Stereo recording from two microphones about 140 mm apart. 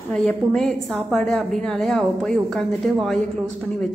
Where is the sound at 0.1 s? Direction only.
5° left (ahead or behind).